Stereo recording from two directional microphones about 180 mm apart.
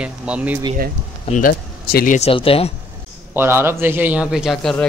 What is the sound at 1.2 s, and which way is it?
Speech, 50° left (ahead or behind).